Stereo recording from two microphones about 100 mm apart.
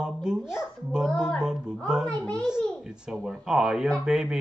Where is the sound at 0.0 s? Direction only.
10° right (ahead or behind).